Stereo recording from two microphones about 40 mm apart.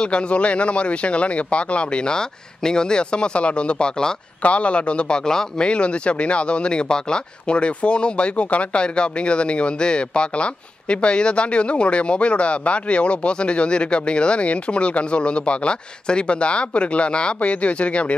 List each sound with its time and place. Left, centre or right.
0.0 s speech: left
4.4 s speech: left; by 5.7 s centre
5.7 s speech: left